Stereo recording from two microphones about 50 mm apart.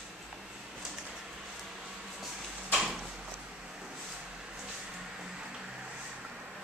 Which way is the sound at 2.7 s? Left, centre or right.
Centre.